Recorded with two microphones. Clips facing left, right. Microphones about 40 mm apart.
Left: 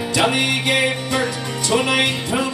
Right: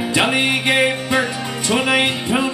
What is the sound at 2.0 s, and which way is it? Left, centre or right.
Music, right.